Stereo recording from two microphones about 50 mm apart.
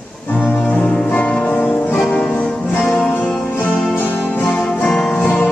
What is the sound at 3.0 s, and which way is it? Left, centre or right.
Music, left.